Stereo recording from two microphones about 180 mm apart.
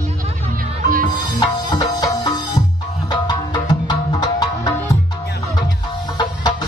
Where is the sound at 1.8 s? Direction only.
20° left (ahead or behind).